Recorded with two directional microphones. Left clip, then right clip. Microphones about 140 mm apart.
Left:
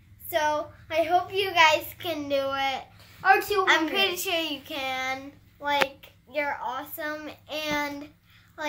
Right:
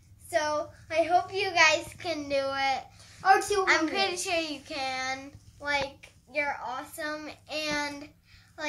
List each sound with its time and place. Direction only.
0.3 s child singing: 35° left (ahead or behind)
3.2 s a woman's voice: 15° right (ahead or behind)
3.6 s child singing: 40° left (ahead or behind)